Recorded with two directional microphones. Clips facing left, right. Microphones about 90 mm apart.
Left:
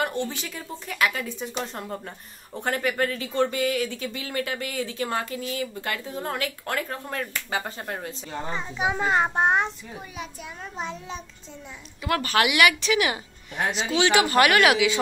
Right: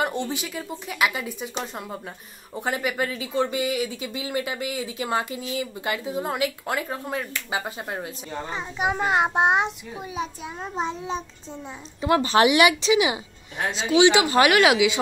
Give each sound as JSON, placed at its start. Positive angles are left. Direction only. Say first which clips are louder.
{"t": 0.0, "sound": "speech", "louder": "right 1 dB", "side_deg": -20}
{"t": 10.1, "sound": "a child's voice", "louder": "right 9 dB", "side_deg": -30}